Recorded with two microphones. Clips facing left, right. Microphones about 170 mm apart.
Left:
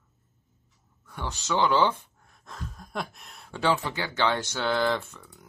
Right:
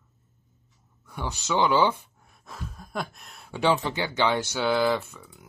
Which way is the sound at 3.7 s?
20° right (ahead or behind).